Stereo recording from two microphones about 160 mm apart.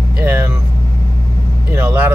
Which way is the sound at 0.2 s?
15° right (ahead or behind).